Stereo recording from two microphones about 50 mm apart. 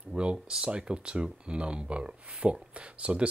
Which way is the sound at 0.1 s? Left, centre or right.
Centre.